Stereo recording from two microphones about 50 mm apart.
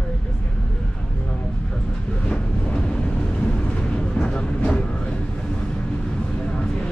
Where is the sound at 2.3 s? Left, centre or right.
Centre.